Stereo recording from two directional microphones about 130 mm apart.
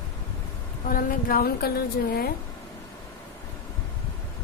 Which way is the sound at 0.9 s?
90° left.